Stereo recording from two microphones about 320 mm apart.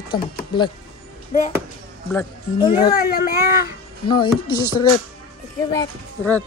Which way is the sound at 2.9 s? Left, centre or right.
Left.